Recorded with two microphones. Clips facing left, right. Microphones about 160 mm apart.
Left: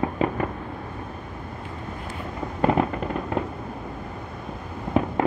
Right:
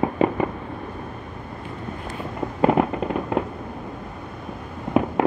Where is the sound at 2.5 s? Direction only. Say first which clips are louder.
Right 3 dB; 5° right (ahead or behind).